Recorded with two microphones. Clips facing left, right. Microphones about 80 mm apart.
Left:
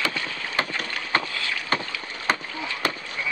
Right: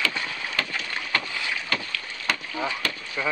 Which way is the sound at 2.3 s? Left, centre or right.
Left.